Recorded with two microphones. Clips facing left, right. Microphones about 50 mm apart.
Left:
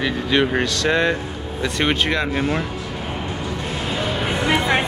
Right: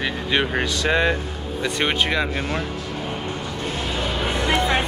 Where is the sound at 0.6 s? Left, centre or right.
Centre.